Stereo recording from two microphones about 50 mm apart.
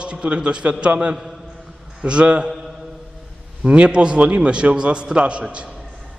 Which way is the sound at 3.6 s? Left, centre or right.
Right.